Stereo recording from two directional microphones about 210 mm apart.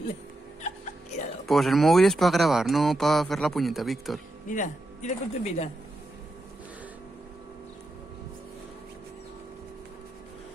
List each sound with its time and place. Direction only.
1.4 s speech: centre (ahead or behind)
4.5 s speech: 35° left (ahead or behind)